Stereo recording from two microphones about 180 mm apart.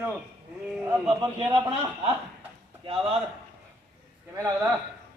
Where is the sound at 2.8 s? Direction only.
30° right (ahead or behind).